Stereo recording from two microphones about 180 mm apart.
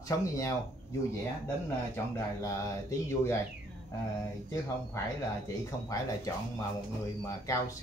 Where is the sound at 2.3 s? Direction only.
15° left (ahead or behind).